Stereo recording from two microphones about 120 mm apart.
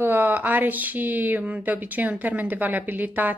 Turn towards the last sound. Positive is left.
turn(degrees=-15)  # may be behind; listen again after turning